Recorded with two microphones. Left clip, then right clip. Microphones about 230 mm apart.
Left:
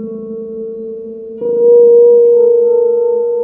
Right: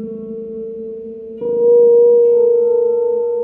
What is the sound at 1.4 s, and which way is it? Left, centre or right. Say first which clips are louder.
Singing bowl: left 4 dB; right.